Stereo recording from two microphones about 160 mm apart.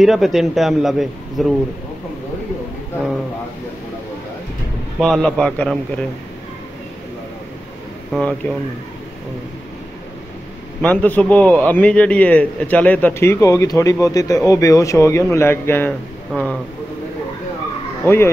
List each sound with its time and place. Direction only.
0.0 s a man's voice: centre (ahead or behind)
5.0 s a man's voice: 5° left (ahead or behind)
8.1 s speech: 5° left (ahead or behind)
10.8 s a man's voice: 10° left (ahead or behind)
18.0 s a man's voice: 15° left (ahead or behind)